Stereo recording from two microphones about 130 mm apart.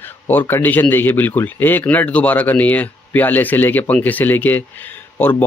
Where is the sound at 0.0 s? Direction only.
15° left (ahead or behind).